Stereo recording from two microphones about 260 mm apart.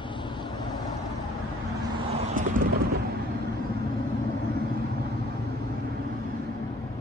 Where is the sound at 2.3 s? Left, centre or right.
Right.